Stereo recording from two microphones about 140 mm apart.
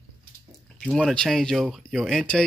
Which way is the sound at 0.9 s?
5° left (ahead or behind).